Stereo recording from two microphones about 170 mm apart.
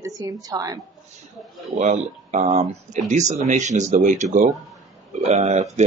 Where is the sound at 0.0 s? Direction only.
20° right (ahead or behind).